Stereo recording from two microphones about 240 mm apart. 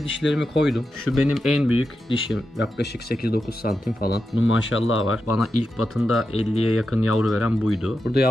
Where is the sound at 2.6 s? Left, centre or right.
Left.